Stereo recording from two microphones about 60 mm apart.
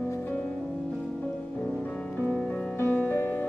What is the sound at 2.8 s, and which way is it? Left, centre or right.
Music, left.